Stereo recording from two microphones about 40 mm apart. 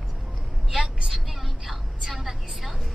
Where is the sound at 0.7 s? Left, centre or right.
Centre.